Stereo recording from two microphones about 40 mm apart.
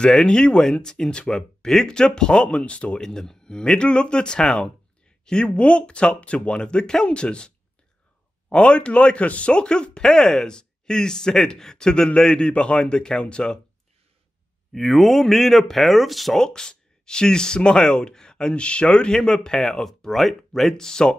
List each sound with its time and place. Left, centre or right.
0.0 s speech: left
1.3 s speech: centre; by 3.0 s left
3.0 s speech: centre
14.7 s speech: centre
16.3 s speech: centre
20.7 s speech: centre